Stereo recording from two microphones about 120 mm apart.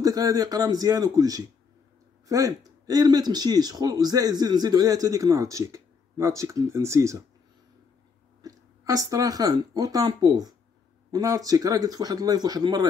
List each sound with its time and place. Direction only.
0.0 s speech: 30° right (ahead or behind)
8.4 s speech: 30° right (ahead or behind)